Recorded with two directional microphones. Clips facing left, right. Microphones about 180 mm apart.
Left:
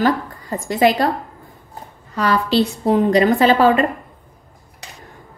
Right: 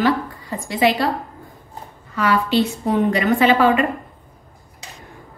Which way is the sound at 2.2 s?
35° left (ahead or behind).